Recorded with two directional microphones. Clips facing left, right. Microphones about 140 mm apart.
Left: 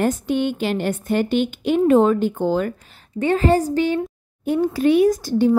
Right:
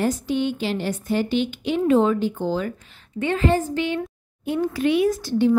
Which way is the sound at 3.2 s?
40° left (ahead or behind).